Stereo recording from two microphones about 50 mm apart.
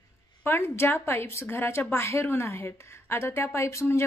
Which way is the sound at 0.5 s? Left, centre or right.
Left.